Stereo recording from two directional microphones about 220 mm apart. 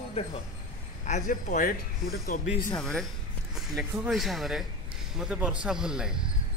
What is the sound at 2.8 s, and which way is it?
Speech, 5° left (ahead or behind).